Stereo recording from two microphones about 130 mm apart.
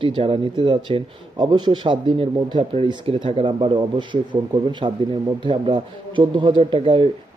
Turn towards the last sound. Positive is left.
turn(degrees=-40)  # may be behind; listen again after turning